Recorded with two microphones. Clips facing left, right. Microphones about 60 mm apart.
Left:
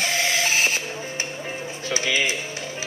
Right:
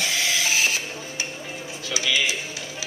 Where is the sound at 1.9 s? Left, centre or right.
Left.